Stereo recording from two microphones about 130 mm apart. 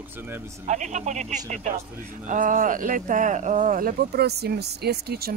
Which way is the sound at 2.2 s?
85° right.